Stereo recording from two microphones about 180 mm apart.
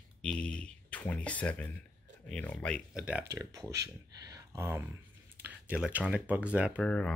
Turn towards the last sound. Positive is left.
turn(degrees=5)  # may be behind; listen again after turning